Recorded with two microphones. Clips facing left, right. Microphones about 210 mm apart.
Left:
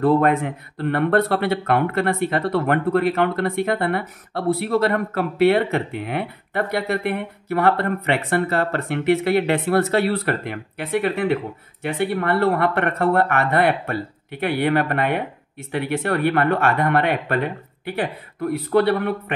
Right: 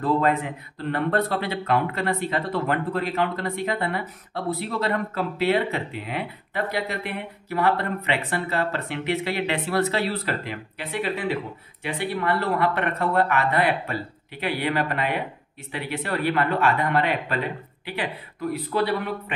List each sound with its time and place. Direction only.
0.0 s speech: 55° left (ahead or behind)